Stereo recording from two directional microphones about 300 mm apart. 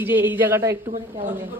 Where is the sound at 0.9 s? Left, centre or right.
Right.